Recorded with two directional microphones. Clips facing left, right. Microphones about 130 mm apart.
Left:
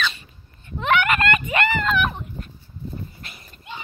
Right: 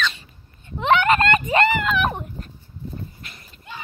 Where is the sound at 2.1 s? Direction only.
45° right (ahead or behind).